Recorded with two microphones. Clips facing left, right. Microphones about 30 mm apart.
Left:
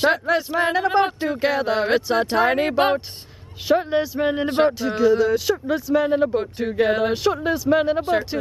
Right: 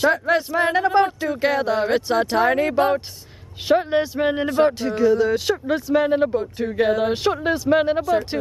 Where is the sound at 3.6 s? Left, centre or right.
Centre.